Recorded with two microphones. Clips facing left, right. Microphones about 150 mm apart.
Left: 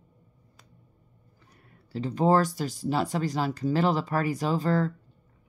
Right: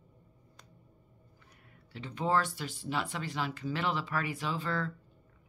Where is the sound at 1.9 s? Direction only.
40° left (ahead or behind).